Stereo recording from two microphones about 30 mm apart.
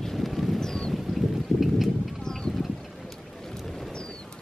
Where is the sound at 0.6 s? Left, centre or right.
Left.